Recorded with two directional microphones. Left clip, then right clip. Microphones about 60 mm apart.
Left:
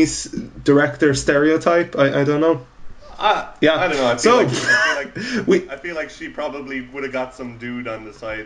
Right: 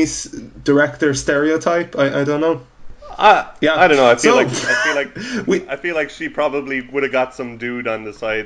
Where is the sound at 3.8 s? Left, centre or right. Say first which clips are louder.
Right 6 dB; centre.